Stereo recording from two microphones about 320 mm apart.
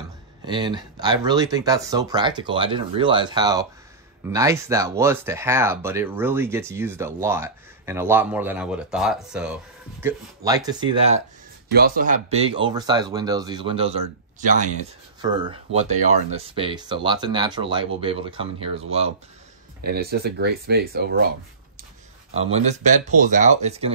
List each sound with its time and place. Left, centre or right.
0.5 s speech: centre
11.7 s speech: right
19.8 s speech: right
23.2 s speech: right